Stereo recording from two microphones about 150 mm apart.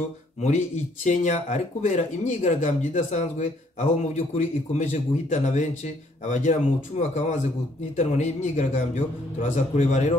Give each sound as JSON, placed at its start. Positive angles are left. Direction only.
{"t": 0.4, "sound": "speech", "side_deg": 50}